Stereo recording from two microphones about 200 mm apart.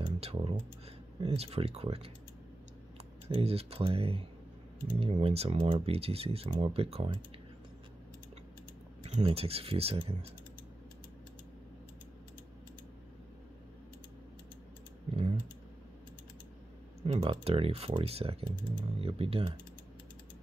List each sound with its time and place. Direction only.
0.0 s speech: 30° right (ahead or behind)
3.3 s speech: 30° right (ahead or behind)
9.0 s speech: 30° right (ahead or behind)
17.0 s speech: 30° right (ahead or behind)